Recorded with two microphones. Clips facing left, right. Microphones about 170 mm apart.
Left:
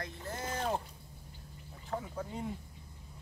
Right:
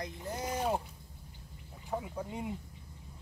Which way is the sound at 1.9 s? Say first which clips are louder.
Right 1 dB; 15° right (ahead or behind).